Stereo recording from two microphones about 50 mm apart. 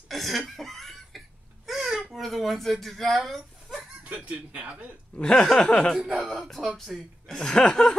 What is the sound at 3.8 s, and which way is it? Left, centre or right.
Speech, right.